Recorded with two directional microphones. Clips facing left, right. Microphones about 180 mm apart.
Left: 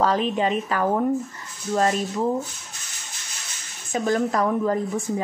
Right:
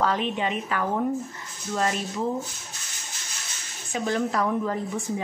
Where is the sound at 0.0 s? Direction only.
40° left (ahead or behind).